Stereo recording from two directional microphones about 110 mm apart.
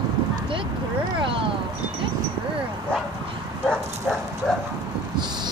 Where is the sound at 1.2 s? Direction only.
50° right (ahead or behind).